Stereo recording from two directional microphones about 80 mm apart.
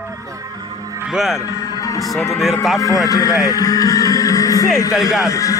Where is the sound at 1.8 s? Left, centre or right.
Left.